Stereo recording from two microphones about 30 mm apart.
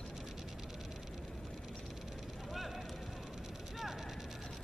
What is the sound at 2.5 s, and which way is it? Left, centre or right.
Vehicle, centre.